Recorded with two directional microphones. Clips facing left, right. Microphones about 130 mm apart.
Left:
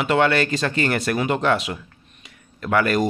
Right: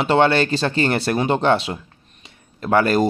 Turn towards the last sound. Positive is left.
turn(degrees=-30)  # may be behind; listen again after turning